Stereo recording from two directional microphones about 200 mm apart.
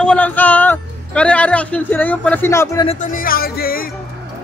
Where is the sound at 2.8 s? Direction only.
40° left (ahead or behind).